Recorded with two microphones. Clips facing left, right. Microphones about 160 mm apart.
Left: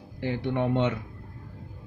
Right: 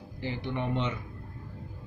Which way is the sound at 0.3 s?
65° left (ahead or behind).